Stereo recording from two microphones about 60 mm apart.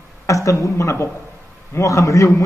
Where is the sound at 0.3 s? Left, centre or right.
Left.